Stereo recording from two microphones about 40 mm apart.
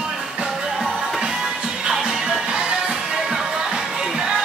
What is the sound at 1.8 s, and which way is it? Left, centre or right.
Music, centre.